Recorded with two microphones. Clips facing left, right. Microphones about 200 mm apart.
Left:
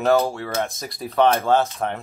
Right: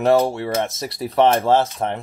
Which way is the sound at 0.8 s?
75° right (ahead or behind).